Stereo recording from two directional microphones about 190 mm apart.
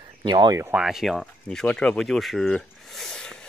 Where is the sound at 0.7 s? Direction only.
Centre (ahead or behind).